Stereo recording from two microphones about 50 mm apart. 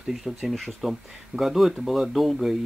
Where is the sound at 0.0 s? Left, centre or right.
Centre.